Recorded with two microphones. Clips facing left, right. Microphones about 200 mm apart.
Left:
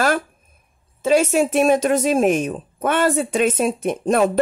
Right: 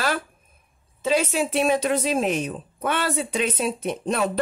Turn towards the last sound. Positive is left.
turn(degrees=50)  # may be behind; listen again after turning